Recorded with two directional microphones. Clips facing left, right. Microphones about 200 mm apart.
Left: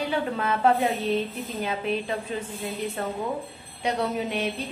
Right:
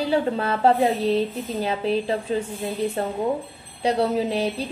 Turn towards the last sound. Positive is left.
turn(degrees=-35)  # may be behind; listen again after turning